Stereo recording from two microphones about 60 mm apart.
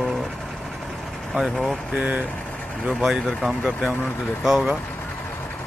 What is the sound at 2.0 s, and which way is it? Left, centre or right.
Speech, right.